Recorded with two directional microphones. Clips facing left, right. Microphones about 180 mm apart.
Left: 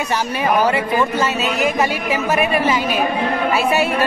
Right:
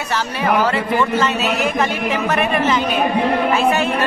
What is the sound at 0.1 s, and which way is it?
Speech, 10° left (ahead or behind).